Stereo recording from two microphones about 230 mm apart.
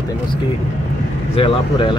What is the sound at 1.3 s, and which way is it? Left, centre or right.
Speech, left.